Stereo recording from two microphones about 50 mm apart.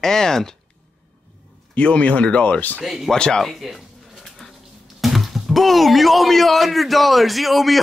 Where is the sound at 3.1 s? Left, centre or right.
Centre.